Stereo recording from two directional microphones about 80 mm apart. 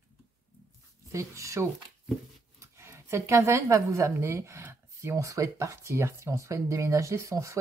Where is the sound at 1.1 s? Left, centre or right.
Right.